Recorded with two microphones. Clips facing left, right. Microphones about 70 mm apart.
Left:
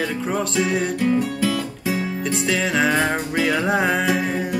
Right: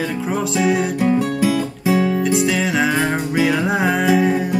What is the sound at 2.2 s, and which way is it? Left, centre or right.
Music, centre.